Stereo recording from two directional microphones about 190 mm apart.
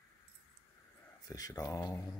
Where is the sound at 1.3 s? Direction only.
15° left (ahead or behind).